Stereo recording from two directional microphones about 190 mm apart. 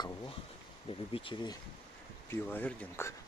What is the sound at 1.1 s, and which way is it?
Speech, 25° left (ahead or behind).